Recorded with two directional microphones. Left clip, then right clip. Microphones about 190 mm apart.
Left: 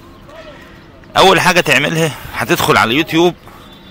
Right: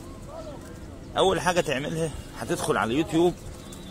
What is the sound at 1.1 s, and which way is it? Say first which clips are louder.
A man's voice: left 14 dB; 20° left (ahead or behind).